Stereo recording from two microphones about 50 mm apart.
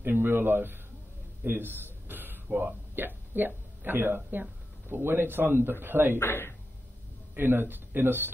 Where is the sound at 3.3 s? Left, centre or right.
Right.